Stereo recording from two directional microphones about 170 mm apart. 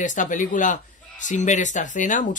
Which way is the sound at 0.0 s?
50° left (ahead or behind).